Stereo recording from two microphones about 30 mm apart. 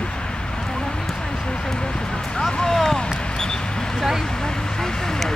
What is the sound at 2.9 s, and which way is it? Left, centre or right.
Basketball bounce, left.